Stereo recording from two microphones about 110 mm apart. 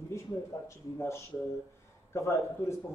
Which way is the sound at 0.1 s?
25° left (ahead or behind).